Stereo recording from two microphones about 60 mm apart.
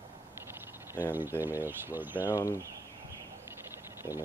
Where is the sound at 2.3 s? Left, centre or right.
Left.